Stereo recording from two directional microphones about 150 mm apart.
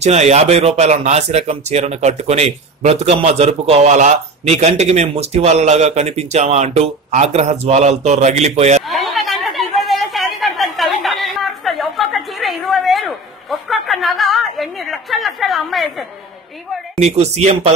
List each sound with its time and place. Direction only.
0.0 s speech: 45° right (ahead or behind)
8.8 s a sound: centre (ahead or behind)
17.0 s speech: 45° right (ahead or behind)